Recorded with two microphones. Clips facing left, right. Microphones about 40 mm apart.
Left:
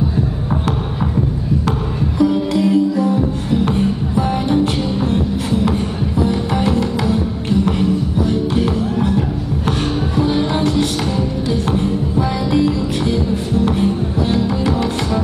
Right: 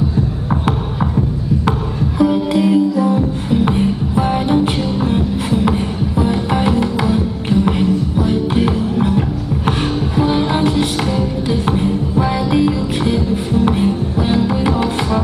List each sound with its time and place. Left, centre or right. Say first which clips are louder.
1.7 s music: right 1 dB; right
6.2 s music: right 1 dB; right
12.2 s music: right 1 dB; right